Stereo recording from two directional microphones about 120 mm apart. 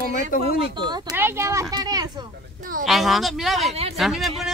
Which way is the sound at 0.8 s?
35° right (ahead or behind).